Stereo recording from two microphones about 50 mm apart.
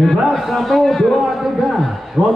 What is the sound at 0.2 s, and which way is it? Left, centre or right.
Speech, centre.